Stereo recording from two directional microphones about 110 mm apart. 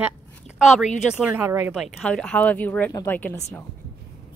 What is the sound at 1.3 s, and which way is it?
Speech, 20° right (ahead or behind).